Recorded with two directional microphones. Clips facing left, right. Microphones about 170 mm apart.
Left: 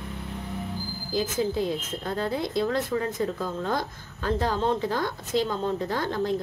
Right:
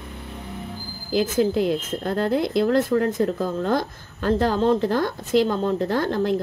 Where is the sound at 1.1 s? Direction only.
85° right.